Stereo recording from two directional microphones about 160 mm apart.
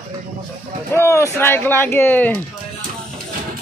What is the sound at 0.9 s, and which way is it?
Speech, 15° left (ahead or behind).